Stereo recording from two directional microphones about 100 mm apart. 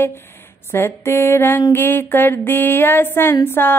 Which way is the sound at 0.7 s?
25° left (ahead or behind).